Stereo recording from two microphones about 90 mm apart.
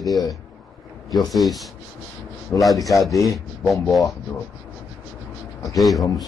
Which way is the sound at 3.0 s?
40° left (ahead or behind).